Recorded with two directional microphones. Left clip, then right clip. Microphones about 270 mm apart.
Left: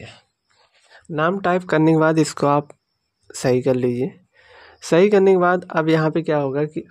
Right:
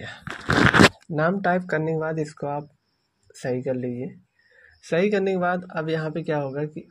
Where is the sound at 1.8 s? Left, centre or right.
Left.